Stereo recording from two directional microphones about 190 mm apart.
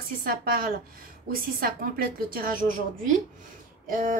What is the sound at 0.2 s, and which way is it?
A woman's voice, 50° right (ahead or behind).